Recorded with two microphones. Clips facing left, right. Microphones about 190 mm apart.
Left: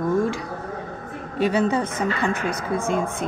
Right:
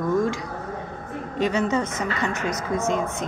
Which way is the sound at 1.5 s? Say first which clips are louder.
Left 3 dB; 30° left (ahead or behind).